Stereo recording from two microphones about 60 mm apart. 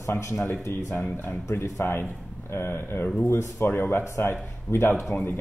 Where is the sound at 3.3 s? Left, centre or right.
Left.